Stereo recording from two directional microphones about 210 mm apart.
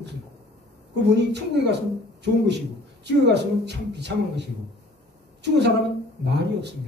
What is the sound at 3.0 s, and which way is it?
A woman's voice, 55° right (ahead or behind).